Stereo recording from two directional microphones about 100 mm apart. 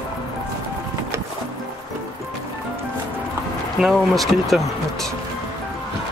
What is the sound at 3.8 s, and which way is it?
Speech, centre (ahead or behind).